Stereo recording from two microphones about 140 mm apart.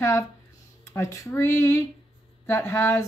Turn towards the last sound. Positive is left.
turn(degrees=20)  # may be behind; listen again after turning